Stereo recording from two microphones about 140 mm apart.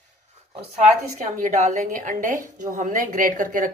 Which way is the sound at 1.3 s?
65° right (ahead or behind).